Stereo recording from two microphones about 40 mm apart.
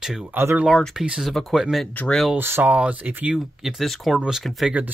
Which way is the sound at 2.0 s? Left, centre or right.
Left.